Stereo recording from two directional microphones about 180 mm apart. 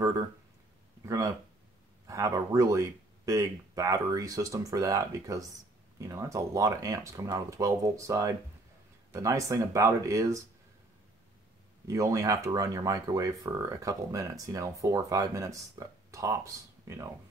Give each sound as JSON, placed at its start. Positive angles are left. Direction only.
{"t": 1.0, "sound": "speech", "side_deg": -20}
{"t": 11.9, "sound": "speech", "side_deg": -15}